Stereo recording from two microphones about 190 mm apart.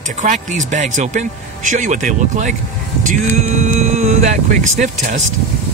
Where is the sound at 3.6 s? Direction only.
35° right (ahead or behind).